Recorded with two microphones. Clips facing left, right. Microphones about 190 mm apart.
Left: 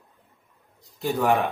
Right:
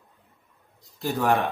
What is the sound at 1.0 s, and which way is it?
Speech, centre (ahead or behind).